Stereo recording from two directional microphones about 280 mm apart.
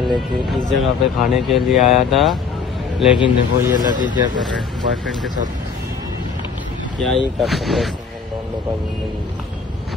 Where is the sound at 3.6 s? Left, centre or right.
Centre.